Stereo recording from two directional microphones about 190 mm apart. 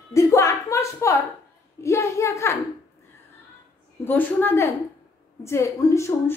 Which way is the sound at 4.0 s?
10° left (ahead or behind).